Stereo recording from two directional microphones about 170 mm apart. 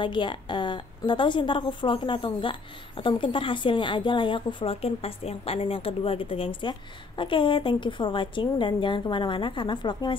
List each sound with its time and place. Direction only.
0.0 s a woman's voice: 30° left (ahead or behind)